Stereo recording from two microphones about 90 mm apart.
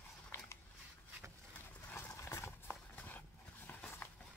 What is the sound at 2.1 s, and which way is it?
Horse, 30° left (ahead or behind).